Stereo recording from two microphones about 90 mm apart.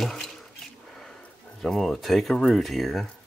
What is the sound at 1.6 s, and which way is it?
Speech, centre (ahead or behind).